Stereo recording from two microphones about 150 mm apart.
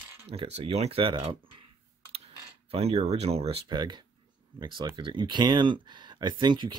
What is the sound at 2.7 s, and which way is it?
Speech, 45° right (ahead or behind).